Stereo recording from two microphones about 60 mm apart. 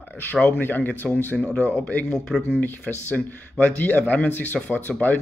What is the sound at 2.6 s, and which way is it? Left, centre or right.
Speech, left.